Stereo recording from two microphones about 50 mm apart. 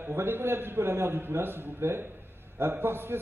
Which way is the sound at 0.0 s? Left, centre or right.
Right.